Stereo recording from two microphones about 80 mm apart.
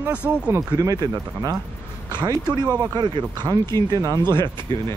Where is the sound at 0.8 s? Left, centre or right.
Right.